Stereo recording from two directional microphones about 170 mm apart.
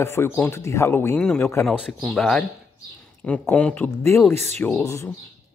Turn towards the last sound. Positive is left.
turn(degrees=15)  # may be behind; listen again after turning